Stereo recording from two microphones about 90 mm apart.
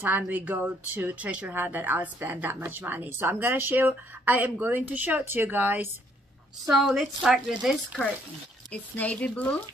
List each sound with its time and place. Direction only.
0.0 s speech: 20° right (ahead or behind)
6.7 s a woman's voice: centre (ahead or behind)
8.9 s speech: 15° left (ahead or behind)